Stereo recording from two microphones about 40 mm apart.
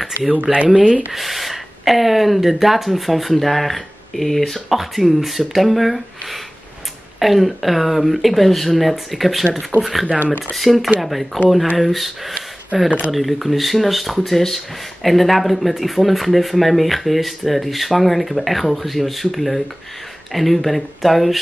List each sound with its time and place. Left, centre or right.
0.3 s speech: right
1.1 s speech: centre
12.7 s speech: right
13.1 s speech: centre